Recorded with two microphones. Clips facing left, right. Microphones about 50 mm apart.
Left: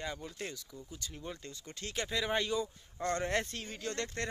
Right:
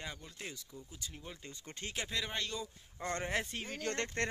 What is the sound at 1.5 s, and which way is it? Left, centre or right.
Speech, right.